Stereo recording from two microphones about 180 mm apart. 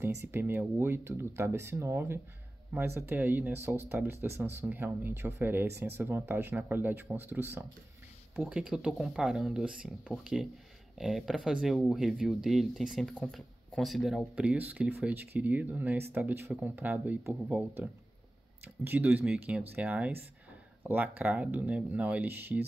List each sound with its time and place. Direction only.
0.3 s speech: 10° right (ahead or behind)
18.9 s speech: 10° right (ahead or behind)